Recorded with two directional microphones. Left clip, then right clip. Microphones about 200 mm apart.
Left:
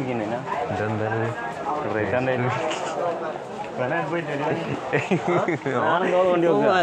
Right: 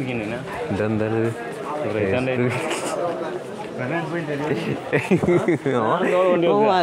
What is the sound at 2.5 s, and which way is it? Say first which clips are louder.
Speech: right 1 dB; 65° right (ahead or behind).